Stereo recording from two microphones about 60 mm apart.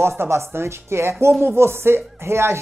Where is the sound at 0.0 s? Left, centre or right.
Right.